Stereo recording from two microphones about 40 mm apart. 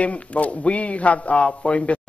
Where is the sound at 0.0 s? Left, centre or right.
Left.